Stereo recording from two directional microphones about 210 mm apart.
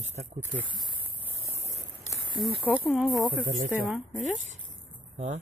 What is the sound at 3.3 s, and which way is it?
Speech, 40° right (ahead or behind).